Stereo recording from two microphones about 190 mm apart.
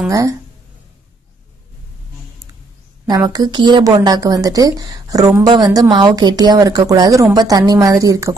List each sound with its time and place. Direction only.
0.1 s a woman's voice: 15° right (ahead or behind)
3.1 s a woman's voice: 20° right (ahead or behind)